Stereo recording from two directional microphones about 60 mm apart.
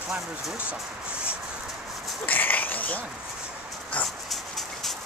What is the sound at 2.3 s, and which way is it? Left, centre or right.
Frog, left.